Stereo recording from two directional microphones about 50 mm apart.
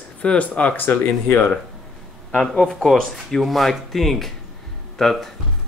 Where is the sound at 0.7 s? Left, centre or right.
Left.